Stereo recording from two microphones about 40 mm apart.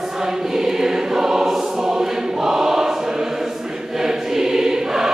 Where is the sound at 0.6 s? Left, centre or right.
Centre.